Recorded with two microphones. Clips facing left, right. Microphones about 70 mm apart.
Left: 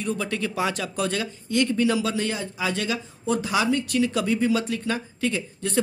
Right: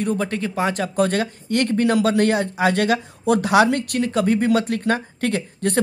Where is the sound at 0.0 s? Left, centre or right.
Right.